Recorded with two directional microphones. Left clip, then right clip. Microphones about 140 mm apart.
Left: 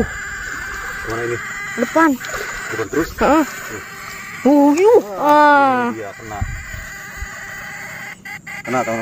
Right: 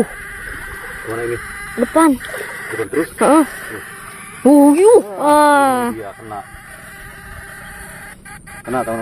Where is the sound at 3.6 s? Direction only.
50° left (ahead or behind).